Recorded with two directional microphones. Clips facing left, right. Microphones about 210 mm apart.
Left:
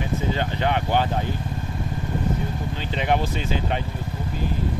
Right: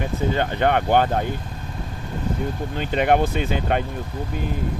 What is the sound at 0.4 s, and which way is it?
Speech, 55° right (ahead or behind).